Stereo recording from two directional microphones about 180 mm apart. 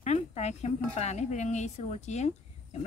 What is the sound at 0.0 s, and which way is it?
A woman's voice, 40° left (ahead or behind).